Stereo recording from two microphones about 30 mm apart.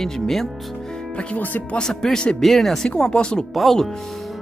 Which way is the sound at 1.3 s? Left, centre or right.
Left.